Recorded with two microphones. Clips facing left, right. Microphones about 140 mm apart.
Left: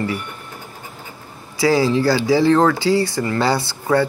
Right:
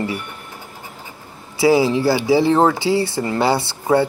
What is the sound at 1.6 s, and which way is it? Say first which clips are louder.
Speech: right 1 dB; 20° right (ahead or behind).